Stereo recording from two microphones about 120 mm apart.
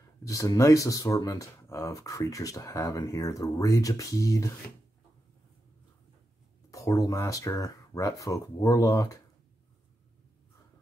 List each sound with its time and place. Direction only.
0.2 s speech: 25° left (ahead or behind)
6.7 s speech: 30° left (ahead or behind)